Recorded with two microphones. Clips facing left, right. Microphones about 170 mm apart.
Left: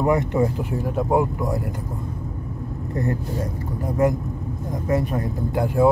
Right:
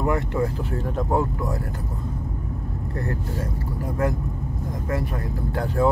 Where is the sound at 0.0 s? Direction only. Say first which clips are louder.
Left 4 dB; 20° left (ahead or behind).